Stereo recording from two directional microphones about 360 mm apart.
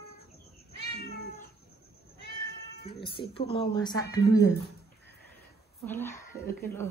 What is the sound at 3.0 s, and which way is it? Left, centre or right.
Speech, centre.